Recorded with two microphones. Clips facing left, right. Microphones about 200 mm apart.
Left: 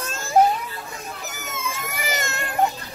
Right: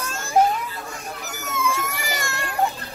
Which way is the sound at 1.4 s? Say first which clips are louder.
Right 8 dB; 20° left (ahead or behind).